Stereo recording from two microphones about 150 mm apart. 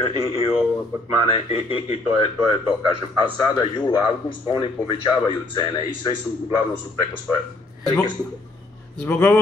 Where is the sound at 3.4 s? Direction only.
30° left (ahead or behind).